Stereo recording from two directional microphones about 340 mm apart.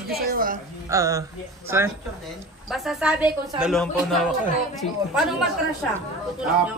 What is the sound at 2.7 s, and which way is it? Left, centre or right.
Speech, centre.